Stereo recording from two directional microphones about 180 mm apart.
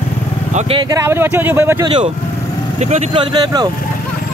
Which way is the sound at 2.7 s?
40° right (ahead or behind).